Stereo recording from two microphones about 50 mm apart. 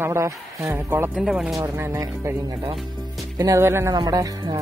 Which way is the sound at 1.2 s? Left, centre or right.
Centre.